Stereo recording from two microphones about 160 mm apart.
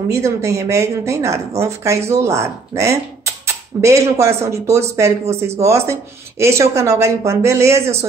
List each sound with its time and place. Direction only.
0.1 s speech: 20° right (ahead or behind)